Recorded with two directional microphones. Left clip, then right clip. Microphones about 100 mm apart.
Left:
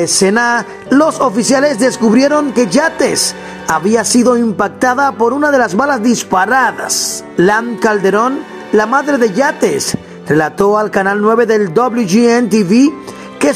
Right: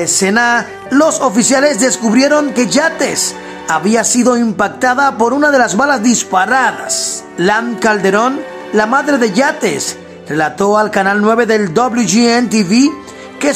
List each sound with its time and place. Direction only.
0.0 s speech: 35° left (ahead or behind); by 3.2 s 15° left (ahead or behind)
3.6 s speech: 30° left (ahead or behind)
6.9 s speech: 5° right (ahead or behind)
7.3 s speech: 30° left (ahead or behind)